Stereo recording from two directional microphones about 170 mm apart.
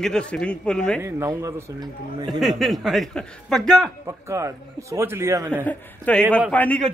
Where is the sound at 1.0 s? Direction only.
15° right (ahead or behind).